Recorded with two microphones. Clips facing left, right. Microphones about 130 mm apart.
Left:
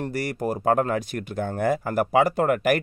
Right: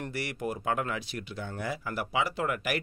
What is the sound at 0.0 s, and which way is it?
Speech, 40° left (ahead or behind).